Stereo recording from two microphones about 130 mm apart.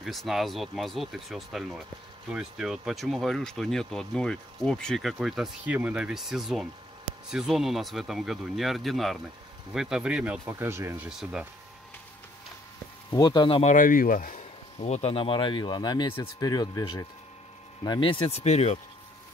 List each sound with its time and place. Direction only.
0.0 s speech: centre (ahead or behind)
10.5 s speech: 20° right (ahead or behind)
11.1 s speech: 5° right (ahead or behind)
13.1 s speech: 35° left (ahead or behind)
13.6 s speech: 80° left; by 18.8 s 55° left (ahead or behind)